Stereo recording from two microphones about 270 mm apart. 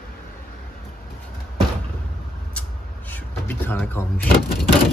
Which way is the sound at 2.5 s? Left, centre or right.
Centre.